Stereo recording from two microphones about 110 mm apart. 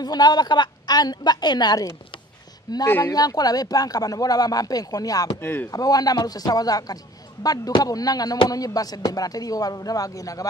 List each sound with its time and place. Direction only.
0.0 s speech: 40° left (ahead or behind)
5.4 s speech: 20° left (ahead or behind)
5.7 s speech: 35° left (ahead or behind)